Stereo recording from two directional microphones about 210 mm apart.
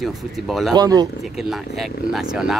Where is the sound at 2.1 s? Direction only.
Centre (ahead or behind).